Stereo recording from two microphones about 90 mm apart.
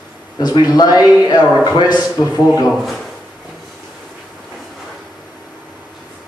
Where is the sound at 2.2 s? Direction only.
50° left (ahead or behind).